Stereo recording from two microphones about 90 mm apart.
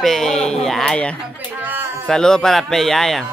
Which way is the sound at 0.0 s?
5° left (ahead or behind).